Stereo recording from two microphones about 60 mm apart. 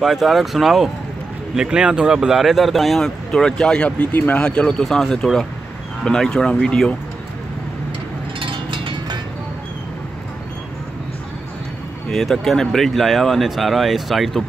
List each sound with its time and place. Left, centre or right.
0.0 s speech: centre
1.5 s speech: centre
4.8 s speech: centre
12.1 s speech: centre